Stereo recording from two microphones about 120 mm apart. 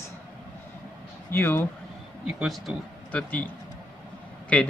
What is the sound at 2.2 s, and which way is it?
Speech, 5° right (ahead or behind).